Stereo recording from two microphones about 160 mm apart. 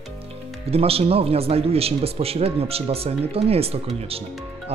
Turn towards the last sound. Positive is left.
turn(degrees=-40)  # may be behind; listen again after turning